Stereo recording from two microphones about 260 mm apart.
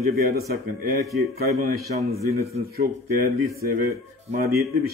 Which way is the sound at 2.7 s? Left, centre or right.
Right.